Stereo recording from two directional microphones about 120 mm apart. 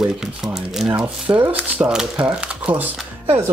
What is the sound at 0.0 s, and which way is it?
Speech, 5° right (ahead or behind).